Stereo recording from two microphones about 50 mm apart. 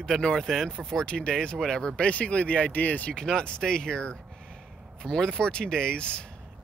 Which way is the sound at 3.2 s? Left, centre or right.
Centre.